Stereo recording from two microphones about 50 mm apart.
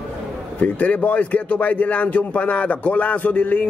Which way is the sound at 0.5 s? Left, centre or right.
Left.